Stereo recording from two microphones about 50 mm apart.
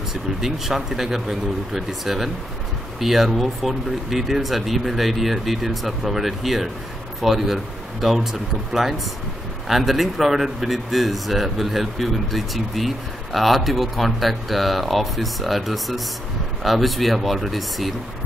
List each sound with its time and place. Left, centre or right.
0.1 s speech: centre